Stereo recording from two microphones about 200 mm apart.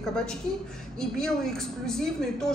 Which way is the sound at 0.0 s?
5° left (ahead or behind).